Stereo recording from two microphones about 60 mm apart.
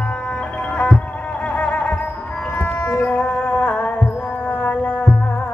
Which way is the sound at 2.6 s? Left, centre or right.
Left.